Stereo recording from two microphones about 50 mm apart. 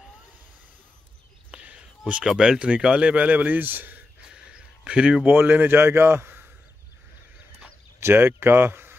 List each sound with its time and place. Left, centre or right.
1.5 s a sound: right
2.2 s speech: centre
2.6 s speech: centre; by 4.0 s right
4.3 s a sound: centre
5.2 s a man's voice: right
8.0 s speech: right